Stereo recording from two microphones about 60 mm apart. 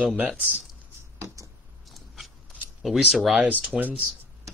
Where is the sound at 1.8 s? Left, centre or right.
Centre.